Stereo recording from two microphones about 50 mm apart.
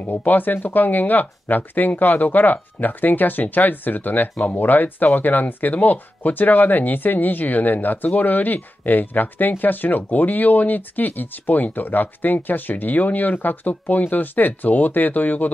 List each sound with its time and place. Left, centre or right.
0.0 s speech: left